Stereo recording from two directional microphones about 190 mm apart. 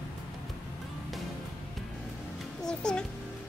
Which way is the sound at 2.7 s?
5° left (ahead or behind).